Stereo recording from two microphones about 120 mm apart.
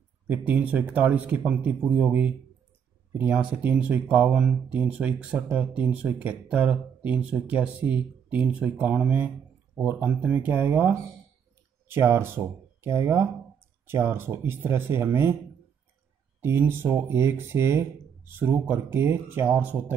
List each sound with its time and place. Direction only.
0.3 s speech: 15° right (ahead or behind)
16.3 s speech: 20° right (ahead or behind)